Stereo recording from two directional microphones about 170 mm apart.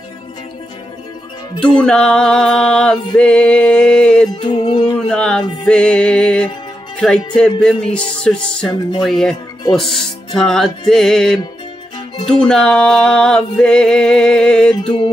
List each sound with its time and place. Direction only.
1.8 s music: 5° left (ahead or behind)
4.4 s music: 30° left (ahead or behind)
4.9 s music: 5° left (ahead or behind)
9.7 s speech: centre (ahead or behind)
10.9 s music: centre (ahead or behind)